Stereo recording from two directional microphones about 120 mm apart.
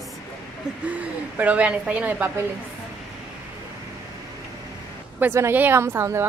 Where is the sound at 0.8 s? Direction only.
10° right (ahead or behind).